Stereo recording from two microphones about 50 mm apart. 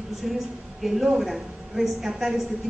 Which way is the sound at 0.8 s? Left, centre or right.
Centre.